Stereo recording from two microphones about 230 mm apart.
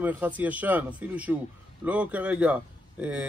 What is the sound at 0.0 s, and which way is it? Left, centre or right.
Speech, centre.